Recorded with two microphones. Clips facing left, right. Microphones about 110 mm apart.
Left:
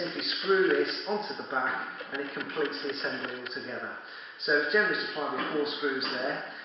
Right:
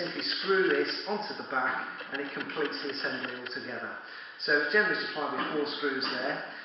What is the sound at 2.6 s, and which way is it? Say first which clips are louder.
Speech: left 2 dB; 5° left (ahead or behind).